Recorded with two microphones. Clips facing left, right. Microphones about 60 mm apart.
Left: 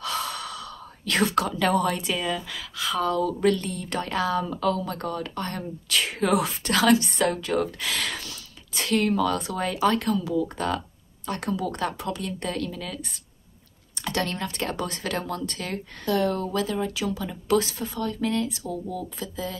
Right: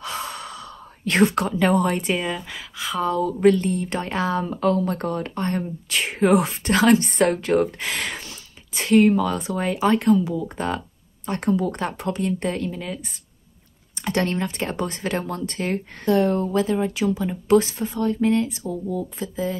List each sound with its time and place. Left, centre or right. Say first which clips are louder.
0.0 s a woman's voice: even; right
14.0 s a woman's voice: right 5 dB; right